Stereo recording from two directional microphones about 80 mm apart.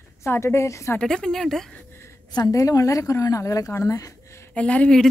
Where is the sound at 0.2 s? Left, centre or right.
Left.